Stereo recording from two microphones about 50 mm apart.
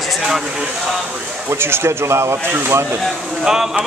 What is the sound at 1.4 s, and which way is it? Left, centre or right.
Speech, right.